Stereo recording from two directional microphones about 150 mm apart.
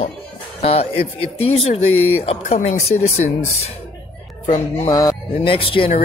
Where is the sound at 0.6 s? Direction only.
40° left (ahead or behind).